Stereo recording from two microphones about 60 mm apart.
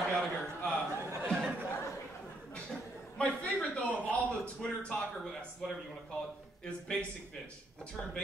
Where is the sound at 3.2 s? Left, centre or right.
Left.